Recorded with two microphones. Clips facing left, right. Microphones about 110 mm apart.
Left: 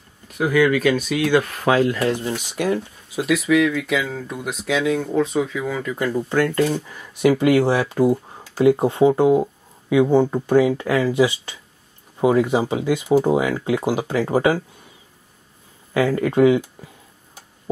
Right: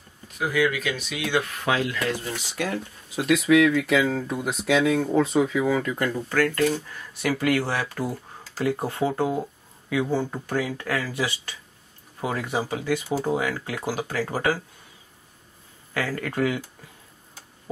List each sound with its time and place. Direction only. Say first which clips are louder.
0.5 s speech: left 8 dB; 55° left (ahead or behind); by 2.1 s 40° left (ahead or behind)
2.2 s speech: left 7 dB; 20° left (ahead or behind)
3.2 s speech: left 1 dB; centre (ahead or behind)
6.1 s speech: left 6 dB; 20° left (ahead or behind)
15.9 s speech: left 9 dB; 20° left (ahead or behind)